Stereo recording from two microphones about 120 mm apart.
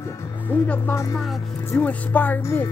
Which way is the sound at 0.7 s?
20° left (ahead or behind).